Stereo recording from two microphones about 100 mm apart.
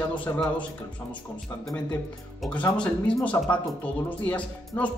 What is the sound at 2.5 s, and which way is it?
Speech, 10° left (ahead or behind).